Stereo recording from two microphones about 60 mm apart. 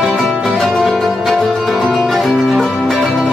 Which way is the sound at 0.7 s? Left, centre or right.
Centre.